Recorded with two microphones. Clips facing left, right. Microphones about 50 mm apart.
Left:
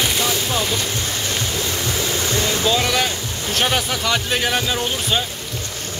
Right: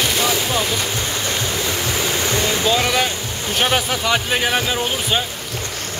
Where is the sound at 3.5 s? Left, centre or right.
Centre.